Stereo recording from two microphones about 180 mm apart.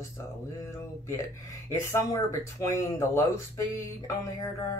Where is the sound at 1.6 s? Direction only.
15° left (ahead or behind).